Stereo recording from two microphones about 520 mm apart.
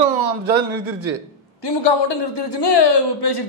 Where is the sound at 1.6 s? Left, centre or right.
Left.